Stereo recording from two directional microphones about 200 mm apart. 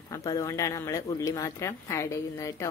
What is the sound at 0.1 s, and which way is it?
A woman's voice, 15° left (ahead or behind).